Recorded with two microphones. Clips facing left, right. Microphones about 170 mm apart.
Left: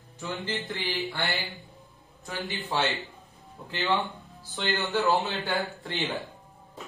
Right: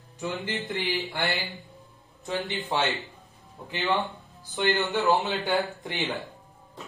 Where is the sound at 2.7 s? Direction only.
20° right (ahead or behind).